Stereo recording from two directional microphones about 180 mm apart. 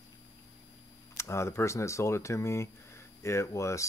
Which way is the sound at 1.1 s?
15° left (ahead or behind).